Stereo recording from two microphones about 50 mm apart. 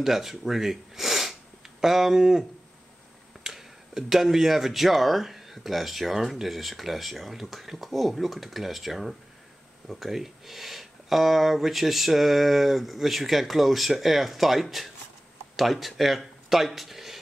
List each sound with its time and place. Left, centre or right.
0.0 s speech: centre
3.4 s speech: centre